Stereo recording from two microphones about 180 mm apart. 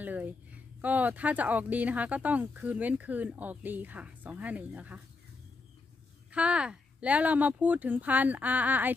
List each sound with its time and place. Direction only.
0.0 s a sound: 10° right (ahead or behind)
0.7 s speech: 10° right (ahead or behind)
6.3 s speech: 5° right (ahead or behind)